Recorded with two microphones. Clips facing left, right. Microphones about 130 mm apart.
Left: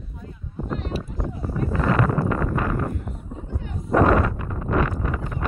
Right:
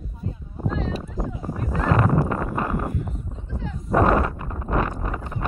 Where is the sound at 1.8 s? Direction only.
35° right (ahead or behind).